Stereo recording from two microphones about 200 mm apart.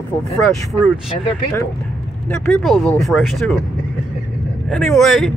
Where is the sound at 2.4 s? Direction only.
5° left (ahead or behind).